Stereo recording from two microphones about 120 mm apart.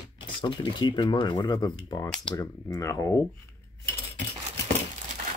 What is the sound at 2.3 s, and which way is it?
Speech, 30° left (ahead or behind).